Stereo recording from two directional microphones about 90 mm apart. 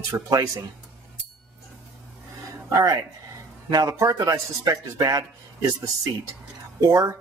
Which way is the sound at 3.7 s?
45° right (ahead or behind).